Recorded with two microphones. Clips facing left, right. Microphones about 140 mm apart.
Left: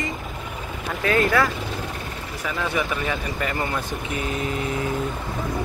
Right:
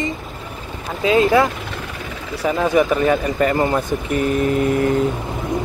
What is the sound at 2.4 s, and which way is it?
Speech, 40° right (ahead or behind).